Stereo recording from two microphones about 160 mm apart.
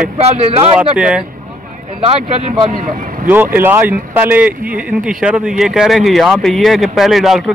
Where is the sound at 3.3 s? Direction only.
10° right (ahead or behind).